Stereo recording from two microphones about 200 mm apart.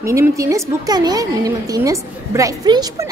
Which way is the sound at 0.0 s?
15° right (ahead or behind).